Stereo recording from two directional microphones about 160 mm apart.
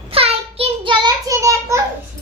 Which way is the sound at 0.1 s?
35° right (ahead or behind).